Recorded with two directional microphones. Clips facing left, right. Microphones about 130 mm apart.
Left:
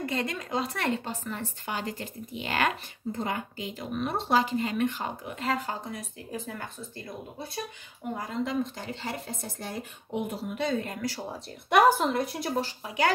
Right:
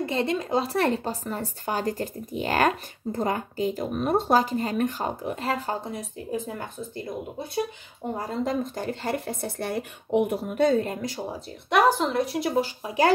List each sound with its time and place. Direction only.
0.0 s speech: 25° right (ahead or behind)
8.1 s speech: 35° right (ahead or behind)
11.1 s speech: 15° right (ahead or behind)
11.7 s speech: centre (ahead or behind)
12.8 s speech: 30° right (ahead or behind)